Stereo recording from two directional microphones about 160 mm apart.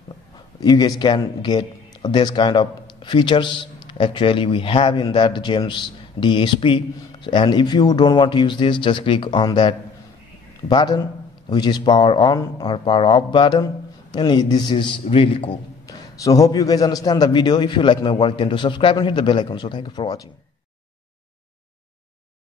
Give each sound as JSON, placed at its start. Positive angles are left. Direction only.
{"t": 0.6, "sound": "a man's voice", "side_deg": 25}
{"t": 15.9, "sound": "a man's voice", "side_deg": 20}